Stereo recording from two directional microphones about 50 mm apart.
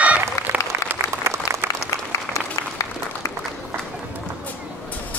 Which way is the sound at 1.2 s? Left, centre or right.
Right.